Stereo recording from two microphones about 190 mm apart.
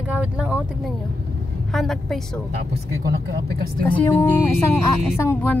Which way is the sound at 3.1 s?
55° right (ahead or behind).